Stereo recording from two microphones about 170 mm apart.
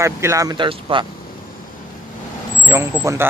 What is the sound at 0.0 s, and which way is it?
Speech, 15° right (ahead or behind).